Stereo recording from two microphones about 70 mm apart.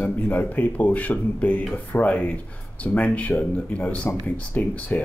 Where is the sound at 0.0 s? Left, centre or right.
Left.